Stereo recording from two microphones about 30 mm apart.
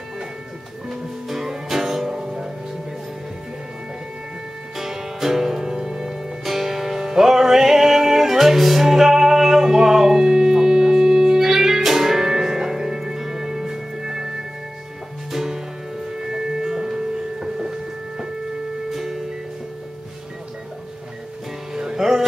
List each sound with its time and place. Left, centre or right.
0.8 s music: centre
4.7 s music: centre
15.3 s music: centre
18.9 s music: centre
21.7 s music: centre